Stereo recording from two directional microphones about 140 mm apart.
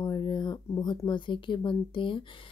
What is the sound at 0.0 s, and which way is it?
A woman's voice, 30° left (ahead or behind).